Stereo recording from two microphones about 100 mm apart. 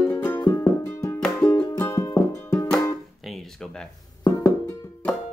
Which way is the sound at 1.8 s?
30° left (ahead or behind).